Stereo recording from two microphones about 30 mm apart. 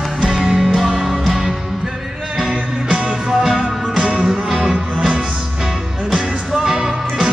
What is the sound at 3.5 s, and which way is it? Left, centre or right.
Music, right.